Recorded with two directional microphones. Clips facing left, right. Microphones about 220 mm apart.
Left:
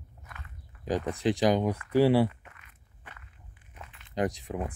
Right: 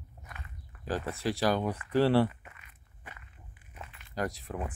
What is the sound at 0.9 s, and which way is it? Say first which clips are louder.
Speech: left 5 dB; 15° left (ahead or behind).